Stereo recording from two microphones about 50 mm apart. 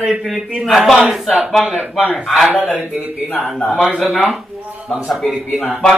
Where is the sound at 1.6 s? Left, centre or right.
Centre.